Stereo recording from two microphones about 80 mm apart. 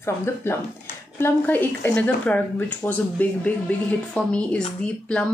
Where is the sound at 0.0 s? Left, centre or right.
Left.